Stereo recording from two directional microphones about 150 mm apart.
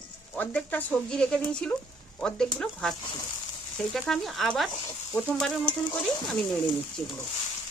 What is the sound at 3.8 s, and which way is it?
Speech, 5° left (ahead or behind).